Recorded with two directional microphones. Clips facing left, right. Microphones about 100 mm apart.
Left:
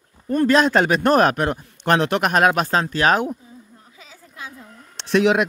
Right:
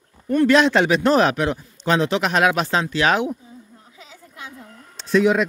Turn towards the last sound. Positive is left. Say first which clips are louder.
# even
turn(degrees=70)  # may be behind; listen again after turning